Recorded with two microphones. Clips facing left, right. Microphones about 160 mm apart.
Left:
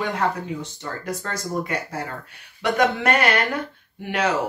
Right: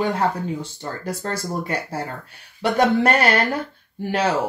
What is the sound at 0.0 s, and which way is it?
Speech, 30° right (ahead or behind).